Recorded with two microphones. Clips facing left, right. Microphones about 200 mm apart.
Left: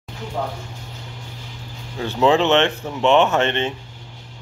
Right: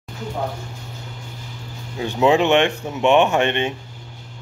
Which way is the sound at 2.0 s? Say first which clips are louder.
Even; 15° right (ahead or behind).